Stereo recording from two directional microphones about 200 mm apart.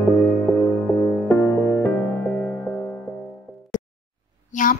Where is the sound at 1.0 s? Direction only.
10° left (ahead or behind).